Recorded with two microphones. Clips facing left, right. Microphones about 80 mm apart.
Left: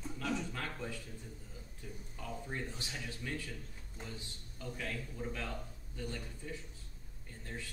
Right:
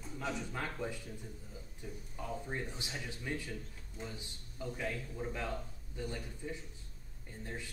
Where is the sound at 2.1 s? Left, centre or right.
Centre.